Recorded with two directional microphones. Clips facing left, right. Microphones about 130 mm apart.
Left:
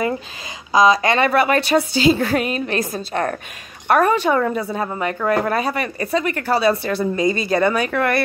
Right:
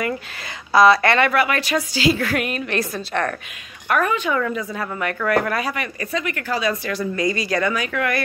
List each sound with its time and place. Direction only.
0.7 s speech: 20° left (ahead or behind)
1.2 s a woman's voice: 35° left (ahead or behind)
3.8 s a woman's voice: 35° left (ahead or behind)